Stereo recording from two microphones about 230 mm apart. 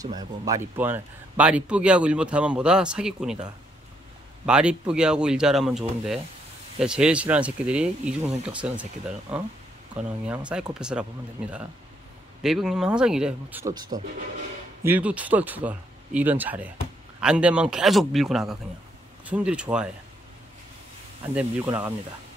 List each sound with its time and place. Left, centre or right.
0.0 s speech: centre
4.5 s speech: centre
12.4 s speech: centre
21.4 s speech: centre